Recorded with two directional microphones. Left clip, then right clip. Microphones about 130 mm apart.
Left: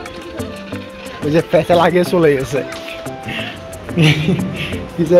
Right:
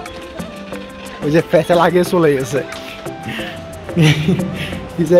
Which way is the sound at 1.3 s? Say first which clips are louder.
Even; 35° right (ahead or behind).